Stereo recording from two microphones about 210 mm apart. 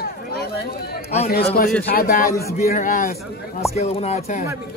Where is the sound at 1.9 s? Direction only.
45° left (ahead or behind).